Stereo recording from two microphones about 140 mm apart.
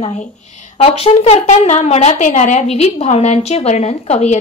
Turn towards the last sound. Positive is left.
turn(degrees=50)  # may be behind; listen again after turning